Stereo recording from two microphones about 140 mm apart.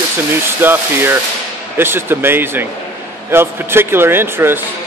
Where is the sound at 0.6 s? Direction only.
15° right (ahead or behind).